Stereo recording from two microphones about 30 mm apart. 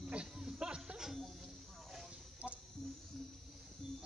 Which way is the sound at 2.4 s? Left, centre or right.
Right.